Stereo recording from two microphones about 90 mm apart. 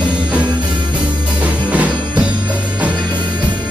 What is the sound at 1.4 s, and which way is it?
Music, 15° right (ahead or behind).